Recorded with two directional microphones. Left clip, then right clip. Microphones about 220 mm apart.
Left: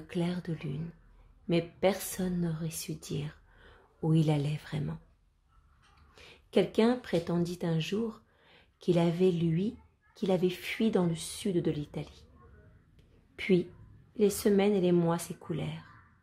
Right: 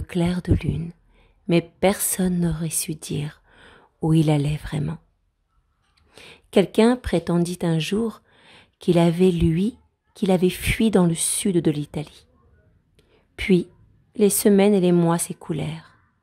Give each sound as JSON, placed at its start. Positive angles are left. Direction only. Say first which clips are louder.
{"t": 0.0, "sound": "a woman's voice", "louder": "right 9 dB", "side_deg": -40}
{"t": 6.1, "sound": "speech", "louder": "right 9 dB", "side_deg": -40}
{"t": 12.9, "sound": "whispering", "louder": "right 9 dB", "side_deg": -40}
{"t": 14.1, "sound": "a woman's voice", "louder": "right 9 dB", "side_deg": -40}